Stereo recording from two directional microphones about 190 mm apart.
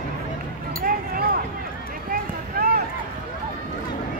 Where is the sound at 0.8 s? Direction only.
50° right (ahead or behind).